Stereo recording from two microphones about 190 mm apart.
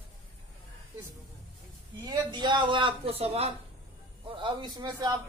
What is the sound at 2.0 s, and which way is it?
A woman's voice, 25° right (ahead or behind).